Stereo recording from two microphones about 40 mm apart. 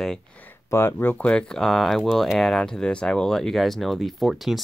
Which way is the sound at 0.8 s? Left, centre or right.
Left.